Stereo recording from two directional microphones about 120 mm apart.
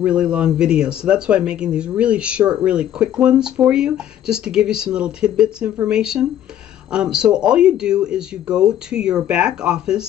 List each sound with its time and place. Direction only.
0.0 s speech: 10° right (ahead or behind)